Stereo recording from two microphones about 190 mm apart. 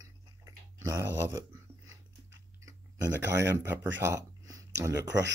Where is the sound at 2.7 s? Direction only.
20° right (ahead or behind).